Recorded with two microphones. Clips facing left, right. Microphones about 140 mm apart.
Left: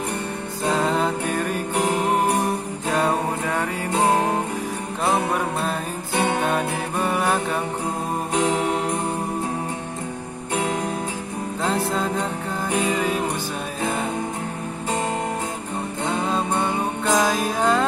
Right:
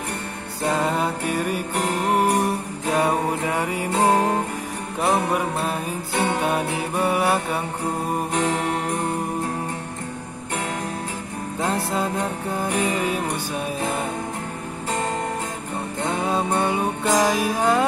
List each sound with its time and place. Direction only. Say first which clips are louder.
0.7 s music: left 1 dB; 10° right (ahead or behind)
2.9 s music: right 1 dB; 10° right (ahead or behind)
3.9 s music: right 1 dB; 15° left (ahead or behind)
6.4 s music: even; 10° right (ahead or behind)
11.6 s music: even; 10° right (ahead or behind)
16.3 s music: right 3 dB; 15° right (ahead or behind)